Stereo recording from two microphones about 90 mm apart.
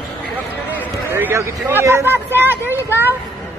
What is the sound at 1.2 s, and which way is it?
Speech, 30° right (ahead or behind).